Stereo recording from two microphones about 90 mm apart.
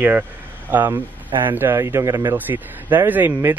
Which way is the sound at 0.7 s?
20° right (ahead or behind).